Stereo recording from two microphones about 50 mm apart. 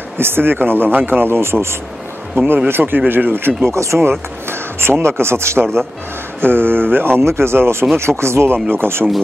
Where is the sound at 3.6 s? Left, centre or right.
Right.